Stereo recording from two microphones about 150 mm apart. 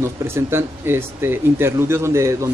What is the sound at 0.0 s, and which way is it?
Speech, 15° right (ahead or behind).